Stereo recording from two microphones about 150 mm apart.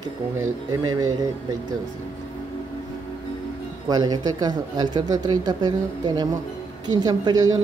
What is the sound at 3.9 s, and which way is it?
Speech, 25° right (ahead or behind).